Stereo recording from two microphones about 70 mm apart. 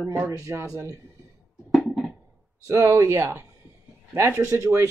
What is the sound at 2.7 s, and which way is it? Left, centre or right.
A woman's voice, right.